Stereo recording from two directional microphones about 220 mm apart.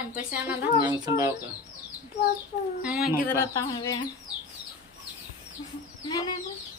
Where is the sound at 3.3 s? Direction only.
15° left (ahead or behind).